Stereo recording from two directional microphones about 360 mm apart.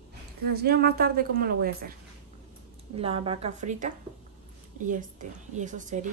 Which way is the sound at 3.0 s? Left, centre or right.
Centre.